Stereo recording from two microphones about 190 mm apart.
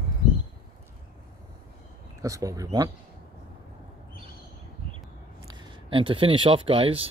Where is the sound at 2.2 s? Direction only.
15° right (ahead or behind).